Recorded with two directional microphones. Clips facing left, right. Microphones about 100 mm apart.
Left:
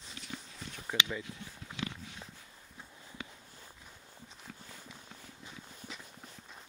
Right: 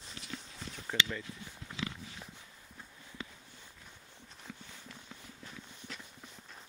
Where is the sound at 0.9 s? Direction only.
10° left (ahead or behind).